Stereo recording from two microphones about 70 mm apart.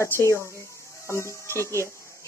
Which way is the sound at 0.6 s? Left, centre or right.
Left.